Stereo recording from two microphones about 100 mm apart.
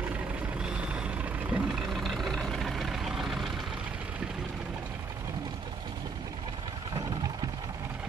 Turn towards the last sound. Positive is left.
turn(degrees=-40)  # may be behind; listen again after turning